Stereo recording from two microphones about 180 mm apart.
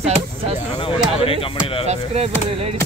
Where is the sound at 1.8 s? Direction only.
35° right (ahead or behind).